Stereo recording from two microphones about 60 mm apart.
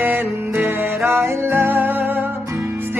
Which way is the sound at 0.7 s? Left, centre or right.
Right.